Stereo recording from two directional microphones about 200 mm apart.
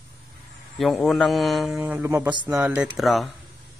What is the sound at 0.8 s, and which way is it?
A man's voice, centre (ahead or behind).